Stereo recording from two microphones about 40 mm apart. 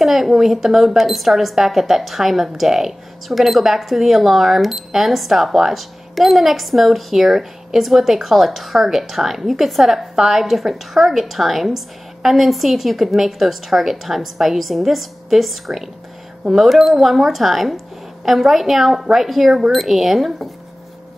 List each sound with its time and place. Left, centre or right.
0.0 s speech: centre